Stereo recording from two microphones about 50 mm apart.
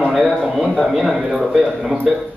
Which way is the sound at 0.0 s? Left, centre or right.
Centre.